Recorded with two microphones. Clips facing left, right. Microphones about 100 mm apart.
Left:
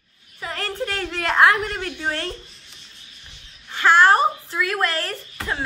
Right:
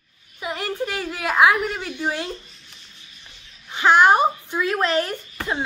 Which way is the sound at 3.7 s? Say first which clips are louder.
Even; 15° right (ahead or behind).